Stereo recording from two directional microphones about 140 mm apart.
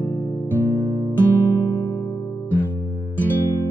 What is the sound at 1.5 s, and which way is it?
Music, 25° left (ahead or behind).